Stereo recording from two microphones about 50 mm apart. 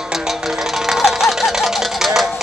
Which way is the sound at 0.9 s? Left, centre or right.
Centre.